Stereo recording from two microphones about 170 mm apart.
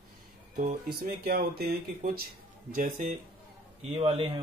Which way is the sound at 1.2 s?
65° right (ahead or behind).